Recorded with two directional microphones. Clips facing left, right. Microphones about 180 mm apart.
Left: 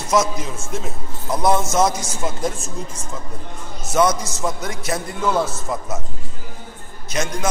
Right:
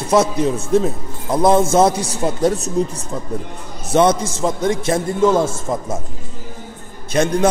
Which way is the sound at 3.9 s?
30° right (ahead or behind).